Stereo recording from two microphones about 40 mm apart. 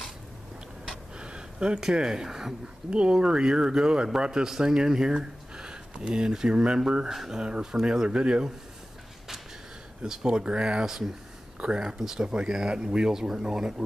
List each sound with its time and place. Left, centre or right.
1.2 s speech: right
10.0 s speech: centre